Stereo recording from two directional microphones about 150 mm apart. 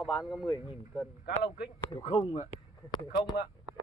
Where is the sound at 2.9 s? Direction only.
30° left (ahead or behind).